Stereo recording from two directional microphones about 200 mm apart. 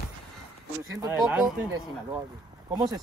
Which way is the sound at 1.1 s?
5° right (ahead or behind).